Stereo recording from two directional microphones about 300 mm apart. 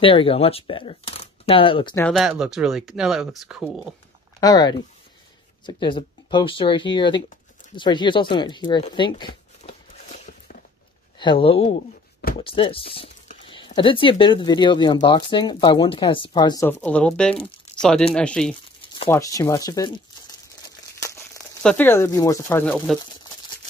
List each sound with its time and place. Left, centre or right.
0.0 s speech: centre
2.0 s speech: centre
4.4 s speech: centre
7.7 s a sound: centre
11.1 s speech: centre
17.4 s a sound: centre
18.1 s speech: centre
20.6 s crumpling: centre